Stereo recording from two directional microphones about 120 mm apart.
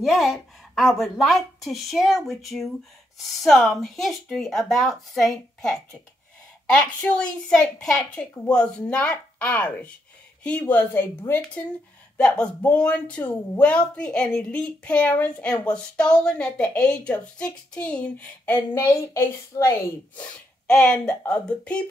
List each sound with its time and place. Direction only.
0.0 s a woman's voice: centre (ahead or behind); by 19.7 s 20° left (ahead or behind)
20.2 s a woman's voice: 5° left (ahead or behind)